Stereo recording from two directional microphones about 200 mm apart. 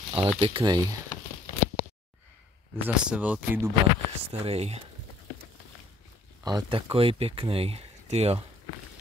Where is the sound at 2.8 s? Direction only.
5° right (ahead or behind).